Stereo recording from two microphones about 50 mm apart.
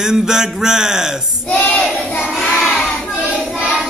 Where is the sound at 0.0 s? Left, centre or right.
Centre.